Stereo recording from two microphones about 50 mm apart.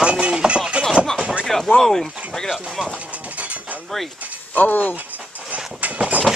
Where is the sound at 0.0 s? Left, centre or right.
Centre.